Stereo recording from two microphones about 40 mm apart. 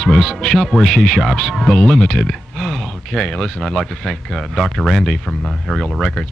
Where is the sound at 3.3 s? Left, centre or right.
Centre.